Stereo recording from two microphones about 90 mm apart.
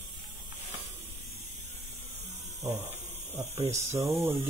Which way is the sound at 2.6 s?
25° right (ahead or behind).